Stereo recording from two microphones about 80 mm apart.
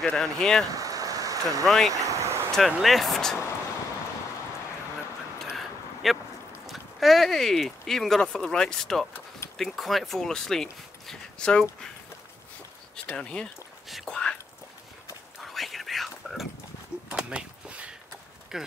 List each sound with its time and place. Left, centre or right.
0.0 s speech: centre
0.7 s a sound: right
1.7 s speech: centre
2.0 s vehicle: right
2.5 s speech: centre
6.0 s speech: centre
13.0 s speech: centre
13.8 s speech: centre
14.1 s whispering: centre
15.4 s whispering: centre
17.1 s a sound: centre
18.5 s speech: centre